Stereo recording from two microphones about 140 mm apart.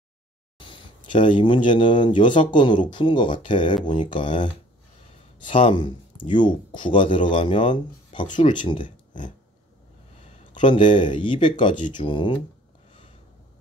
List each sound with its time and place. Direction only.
0.6 s speech: 35° left (ahead or behind)
10.5 s speech: 35° left (ahead or behind)